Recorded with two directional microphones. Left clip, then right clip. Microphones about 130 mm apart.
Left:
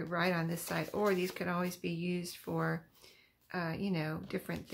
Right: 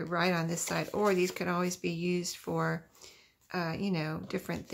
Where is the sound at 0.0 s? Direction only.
30° right (ahead or behind).